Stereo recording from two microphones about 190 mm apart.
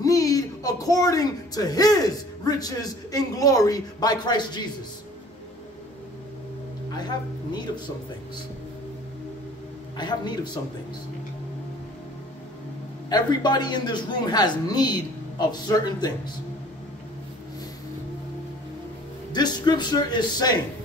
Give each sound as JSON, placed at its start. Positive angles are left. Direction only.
{"t": 0.0, "sound": "speech", "side_deg": 20}
{"t": 9.9, "sound": "a man's voice", "side_deg": 25}
{"t": 13.1, "sound": "a man's voice", "side_deg": 20}
{"t": 19.3, "sound": "a man's voice", "side_deg": 20}